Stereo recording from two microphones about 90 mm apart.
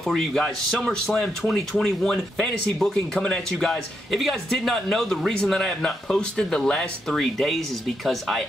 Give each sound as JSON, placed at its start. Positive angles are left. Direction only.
{"t": 0.0, "sound": "speech", "side_deg": 5}